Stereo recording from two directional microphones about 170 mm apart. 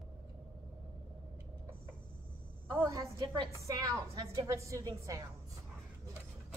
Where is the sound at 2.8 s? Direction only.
25° right (ahead or behind).